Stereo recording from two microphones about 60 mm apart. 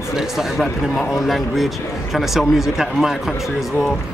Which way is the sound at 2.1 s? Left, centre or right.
Centre.